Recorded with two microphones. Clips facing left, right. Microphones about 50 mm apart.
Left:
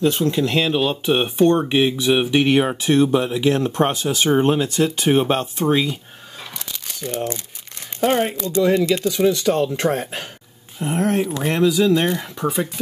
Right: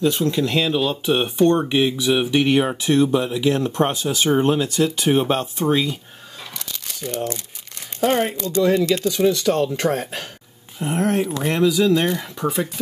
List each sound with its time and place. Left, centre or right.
0.0 s speech: left
2.8 s speech: left
4.3 s speech: left
5.7 s speech: centre
6.5 s crumpling: centre
8.0 s speech: centre
8.9 s speech: centre
10.8 s speech: centre
11.4 s speech: centre